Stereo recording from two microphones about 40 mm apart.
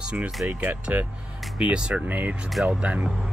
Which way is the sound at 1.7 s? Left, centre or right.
Right.